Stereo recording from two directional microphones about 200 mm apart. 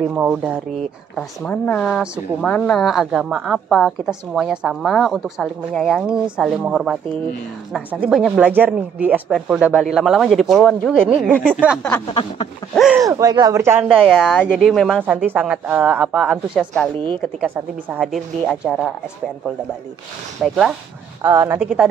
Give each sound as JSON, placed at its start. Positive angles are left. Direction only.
{"t": 0.1, "sound": "speech", "side_deg": -5}
{"t": 1.1, "sound": "a woman's voice", "side_deg": 5}
{"t": 12.1, "sound": "a sound", "side_deg": 25}
{"t": 12.7, "sound": "a woman's voice", "side_deg": -5}
{"t": 13.0, "sound": "speech", "side_deg": -15}
{"t": 14.0, "sound": "a woman's voice", "side_deg": 0}
{"t": 20.4, "sound": "a woman's voice", "side_deg": 0}